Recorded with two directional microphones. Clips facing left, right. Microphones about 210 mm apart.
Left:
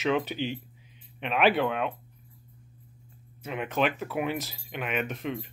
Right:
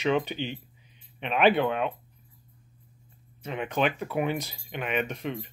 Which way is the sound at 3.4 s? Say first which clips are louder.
Even; 5° left (ahead or behind).